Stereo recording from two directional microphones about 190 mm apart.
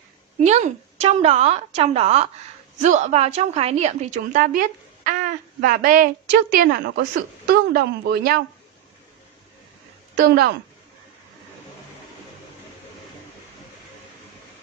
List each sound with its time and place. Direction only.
0.4 s a woman's voice: 40° right (ahead or behind)
6.6 s a woman's voice: 60° right (ahead or behind)
10.1 s a woman's voice: 60° right (ahead or behind)